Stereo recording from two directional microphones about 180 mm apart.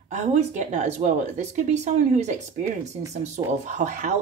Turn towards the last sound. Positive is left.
turn(degrees=-40)  # may be behind; listen again after turning